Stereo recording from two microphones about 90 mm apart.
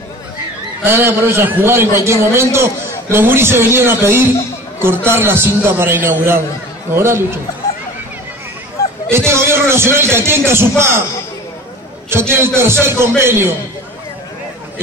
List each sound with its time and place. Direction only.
0.8 s a man's voice: 25° right (ahead or behind)
9.1 s a man's voice: 30° right (ahead or behind)
12.1 s a man's voice: 25° right (ahead or behind)